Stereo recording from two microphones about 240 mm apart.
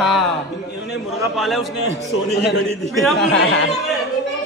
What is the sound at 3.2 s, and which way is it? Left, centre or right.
Speech, left.